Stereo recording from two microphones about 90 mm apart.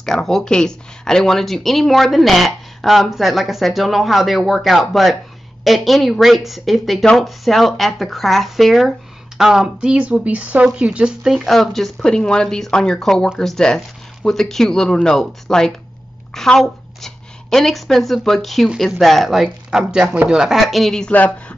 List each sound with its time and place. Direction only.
0.0 s a woman's voice: 5° left (ahead or behind)
21.1 s a woman's voice: 20° left (ahead or behind)